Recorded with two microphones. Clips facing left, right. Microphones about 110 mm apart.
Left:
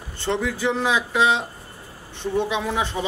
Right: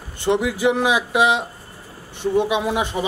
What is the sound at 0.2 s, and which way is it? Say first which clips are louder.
A man's voice: right 5 dB; 15° right (ahead or behind).